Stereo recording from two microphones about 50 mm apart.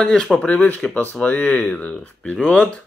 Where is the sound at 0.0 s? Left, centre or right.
Centre.